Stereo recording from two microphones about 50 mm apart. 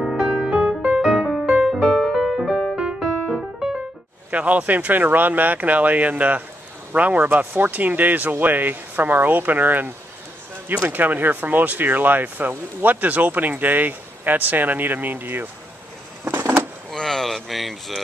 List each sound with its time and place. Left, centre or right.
0.0 s music: centre
1.9 s music: centre
4.3 s speech: right
10.9 s speech: right
16.3 s a sound: right
16.9 s a sound: centre